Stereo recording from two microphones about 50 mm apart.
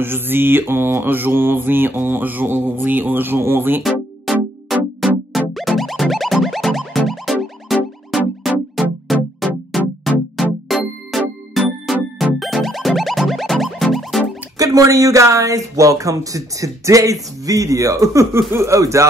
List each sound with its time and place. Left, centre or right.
0.0 s mantra: right
4.3 s music: centre
14.8 s speech: right